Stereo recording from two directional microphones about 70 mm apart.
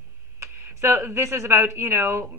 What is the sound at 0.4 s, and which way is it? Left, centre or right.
A woman's voice, right.